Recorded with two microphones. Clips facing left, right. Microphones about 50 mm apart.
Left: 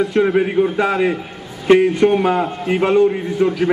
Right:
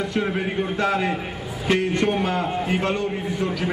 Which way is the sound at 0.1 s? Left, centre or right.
Centre.